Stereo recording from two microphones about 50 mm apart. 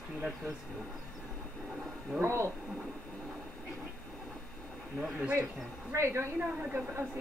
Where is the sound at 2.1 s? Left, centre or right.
Right.